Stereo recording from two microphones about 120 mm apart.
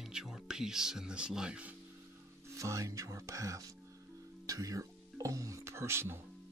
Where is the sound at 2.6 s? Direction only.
25° right (ahead or behind).